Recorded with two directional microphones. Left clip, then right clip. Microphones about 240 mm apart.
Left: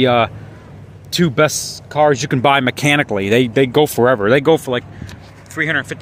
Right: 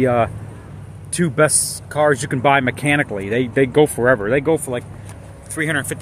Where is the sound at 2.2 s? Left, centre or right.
Left.